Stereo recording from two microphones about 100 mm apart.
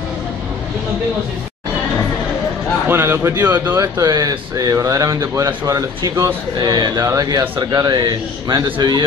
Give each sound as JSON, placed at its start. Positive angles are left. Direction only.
{"t": 2.9, "sound": "speech", "side_deg": -25}
{"t": 3.7, "sound": "speech", "side_deg": -35}
{"t": 6.6, "sound": "speech", "side_deg": -45}
{"t": 8.6, "sound": "speech", "side_deg": -50}